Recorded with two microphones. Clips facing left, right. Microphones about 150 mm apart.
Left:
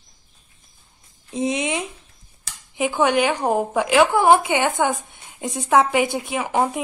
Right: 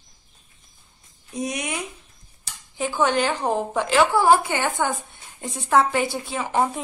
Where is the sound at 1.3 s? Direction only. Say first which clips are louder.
Left 5 dB; 25° left (ahead or behind).